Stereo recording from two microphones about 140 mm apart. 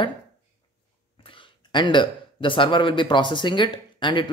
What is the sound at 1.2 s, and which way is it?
Speech, 35° left (ahead or behind).